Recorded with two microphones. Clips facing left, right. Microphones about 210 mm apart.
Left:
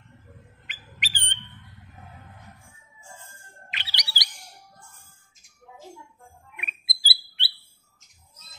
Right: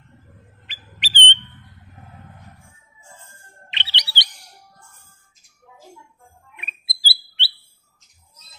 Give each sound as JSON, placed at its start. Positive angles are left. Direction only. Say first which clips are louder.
{"t": 0.7, "sound": "bird", "louder": "right 1 dB", "side_deg": -30}
{"t": 3.7, "sound": "chirp", "louder": "right 5 dB", "side_deg": -25}
{"t": 6.5, "sound": "bird", "louder": "even", "side_deg": -30}